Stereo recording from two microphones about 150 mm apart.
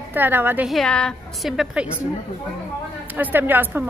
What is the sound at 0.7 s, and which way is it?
A woman's voice, 5° left (ahead or behind).